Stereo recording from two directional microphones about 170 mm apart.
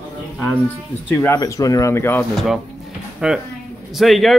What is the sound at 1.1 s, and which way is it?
Speech, 15° left (ahead or behind).